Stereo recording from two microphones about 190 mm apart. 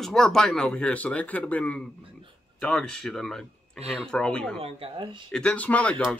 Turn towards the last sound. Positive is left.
turn(degrees=5)  # may be behind; listen again after turning